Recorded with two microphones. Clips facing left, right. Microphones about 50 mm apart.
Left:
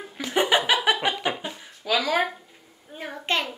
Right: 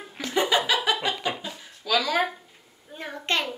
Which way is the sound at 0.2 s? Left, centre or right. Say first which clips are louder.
Left 2 dB; left.